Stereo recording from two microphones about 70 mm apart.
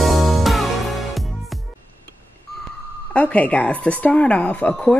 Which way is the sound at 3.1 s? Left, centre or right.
Left.